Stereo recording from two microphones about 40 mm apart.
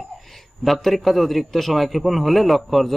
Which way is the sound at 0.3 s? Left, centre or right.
Centre.